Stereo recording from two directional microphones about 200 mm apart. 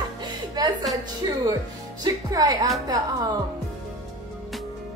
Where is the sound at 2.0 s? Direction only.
20° right (ahead or behind).